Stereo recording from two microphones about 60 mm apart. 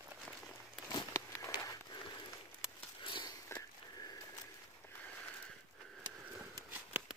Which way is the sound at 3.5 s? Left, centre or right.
Left.